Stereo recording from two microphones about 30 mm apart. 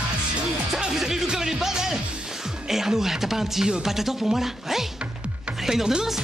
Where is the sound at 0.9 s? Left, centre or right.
Centre.